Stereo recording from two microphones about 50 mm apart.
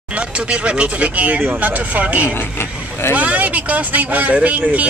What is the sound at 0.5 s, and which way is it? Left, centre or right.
Speech, right.